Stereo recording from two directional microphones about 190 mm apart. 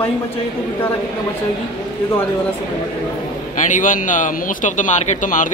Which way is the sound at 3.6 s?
40° left (ahead or behind).